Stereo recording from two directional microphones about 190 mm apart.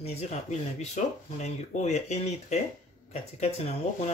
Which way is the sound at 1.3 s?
35° left (ahead or behind).